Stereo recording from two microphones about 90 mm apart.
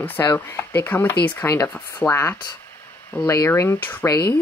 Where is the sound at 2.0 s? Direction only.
15° left (ahead or behind).